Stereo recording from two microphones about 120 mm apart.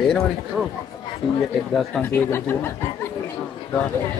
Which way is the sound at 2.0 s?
15° left (ahead or behind).